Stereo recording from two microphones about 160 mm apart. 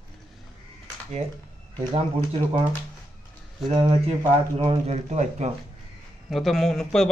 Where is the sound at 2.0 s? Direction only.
35° right (ahead or behind).